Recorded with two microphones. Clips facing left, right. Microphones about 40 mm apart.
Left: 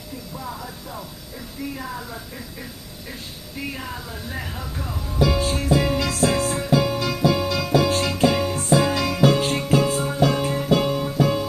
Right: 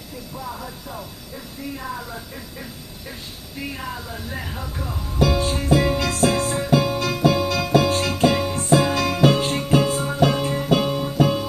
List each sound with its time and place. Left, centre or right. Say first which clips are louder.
0.5 s speech: right 1 dB; centre
3.7 s speech: right 1 dB; centre
5.9 s music: right 1 dB; centre
9.4 s music: even; centre